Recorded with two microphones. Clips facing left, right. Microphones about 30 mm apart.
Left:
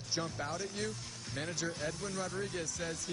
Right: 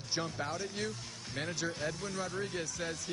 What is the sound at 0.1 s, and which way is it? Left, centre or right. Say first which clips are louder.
Speech: right 1 dB; right.